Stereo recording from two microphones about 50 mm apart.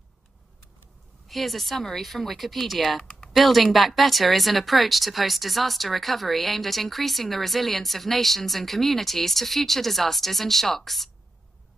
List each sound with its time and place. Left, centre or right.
1.2 s speech: centre
3.0 s typing: centre
3.3 s speech: centre